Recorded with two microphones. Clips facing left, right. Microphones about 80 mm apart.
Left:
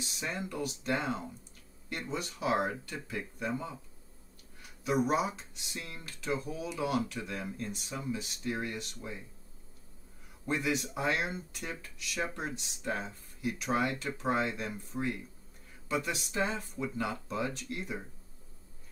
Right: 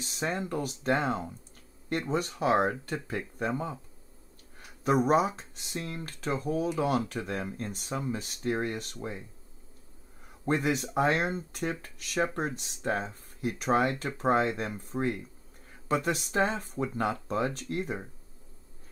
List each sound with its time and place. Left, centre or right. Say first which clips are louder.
0.0 s speech: right 5 dB; right
10.4 s speech: right 4 dB; right